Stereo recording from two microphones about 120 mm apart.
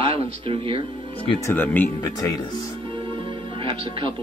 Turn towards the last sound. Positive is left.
turn(degrees=-45)  # may be behind; listen again after turning